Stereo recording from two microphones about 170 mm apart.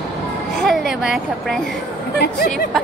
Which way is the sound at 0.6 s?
Centre (ahead or behind).